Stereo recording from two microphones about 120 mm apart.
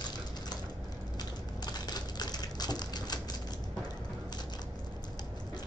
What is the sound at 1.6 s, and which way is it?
Typewriter, 35° left (ahead or behind).